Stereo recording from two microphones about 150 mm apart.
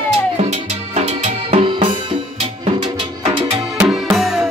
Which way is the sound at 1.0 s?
45° right (ahead or behind).